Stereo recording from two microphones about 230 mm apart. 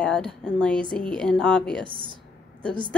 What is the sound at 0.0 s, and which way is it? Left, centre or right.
A woman's voice, centre.